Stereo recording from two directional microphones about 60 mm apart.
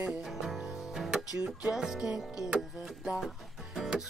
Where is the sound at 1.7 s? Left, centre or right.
Centre.